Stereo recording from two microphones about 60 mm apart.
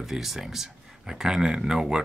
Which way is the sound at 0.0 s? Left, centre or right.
Centre.